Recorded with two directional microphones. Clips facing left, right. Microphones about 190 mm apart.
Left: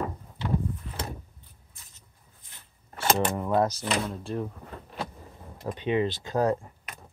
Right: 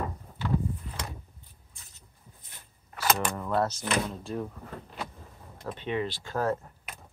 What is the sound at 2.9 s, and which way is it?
Camera, 25° left (ahead or behind).